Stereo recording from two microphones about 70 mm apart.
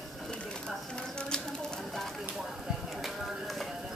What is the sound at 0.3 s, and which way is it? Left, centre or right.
Bird, centre.